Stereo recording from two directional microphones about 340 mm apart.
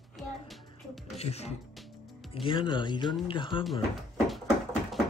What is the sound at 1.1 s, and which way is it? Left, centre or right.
Speech, centre.